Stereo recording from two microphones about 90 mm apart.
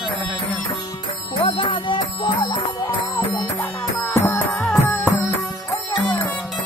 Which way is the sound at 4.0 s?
35° left (ahead or behind).